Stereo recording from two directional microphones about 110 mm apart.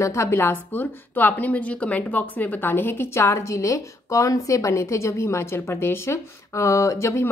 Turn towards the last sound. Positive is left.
turn(degrees=25)  # may be behind; listen again after turning